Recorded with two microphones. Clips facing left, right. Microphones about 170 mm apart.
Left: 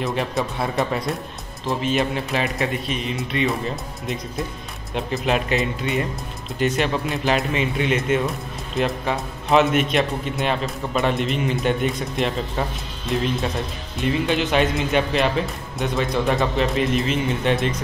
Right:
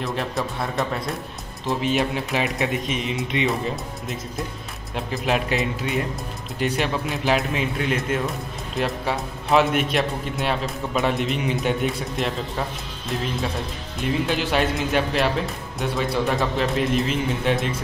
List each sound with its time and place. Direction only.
0.0 s a man's voice: centre (ahead or behind); by 3.2 s 20° right (ahead or behind)
3.4 s a man's voice: centre (ahead or behind)